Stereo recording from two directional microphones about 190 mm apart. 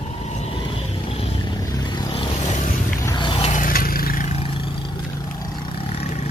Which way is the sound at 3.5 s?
45° left (ahead or behind).